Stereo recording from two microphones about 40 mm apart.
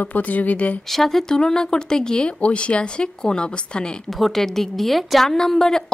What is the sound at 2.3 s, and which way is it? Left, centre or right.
Speech, left.